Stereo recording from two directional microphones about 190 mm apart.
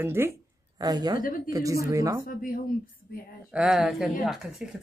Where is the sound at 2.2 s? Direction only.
45° left (ahead or behind).